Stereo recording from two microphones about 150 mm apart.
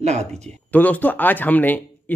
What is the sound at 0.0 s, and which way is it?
Speech, 50° right (ahead or behind).